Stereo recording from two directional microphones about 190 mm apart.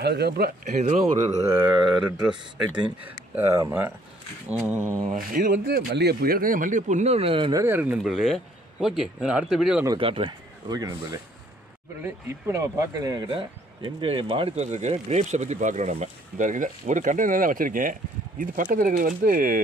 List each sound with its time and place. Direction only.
0.0 s speech: 60° right (ahead or behind)
0.7 s speech: 40° right (ahead or behind)
1.3 s speech: 15° right (ahead or behind)
5.0 s speech: 45° right (ahead or behind); by 7.6 s 25° right (ahead or behind)
7.6 s speech: 10° right (ahead or behind)
9.8 s speech: 30° right (ahead or behind); by 19.6 s 45° right (ahead or behind)